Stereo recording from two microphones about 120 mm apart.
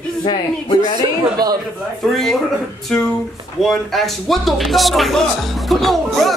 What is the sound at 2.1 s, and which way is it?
Speech, 5° left (ahead or behind).